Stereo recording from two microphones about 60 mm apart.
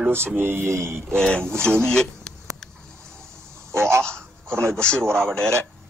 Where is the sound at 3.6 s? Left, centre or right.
Right.